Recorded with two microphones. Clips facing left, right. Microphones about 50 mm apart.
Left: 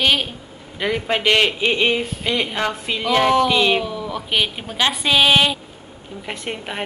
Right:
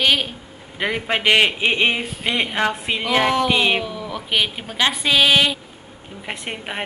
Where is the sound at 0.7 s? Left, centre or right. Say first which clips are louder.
Left 1 dB; centre.